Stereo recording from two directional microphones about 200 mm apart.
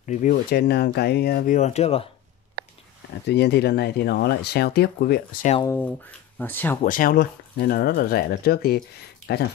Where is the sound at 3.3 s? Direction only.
55° left (ahead or behind).